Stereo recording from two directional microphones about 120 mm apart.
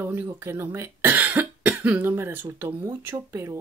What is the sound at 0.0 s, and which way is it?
Speech, 20° right (ahead or behind).